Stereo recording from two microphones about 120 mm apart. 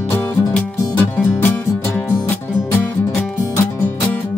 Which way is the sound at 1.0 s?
15° left (ahead or behind).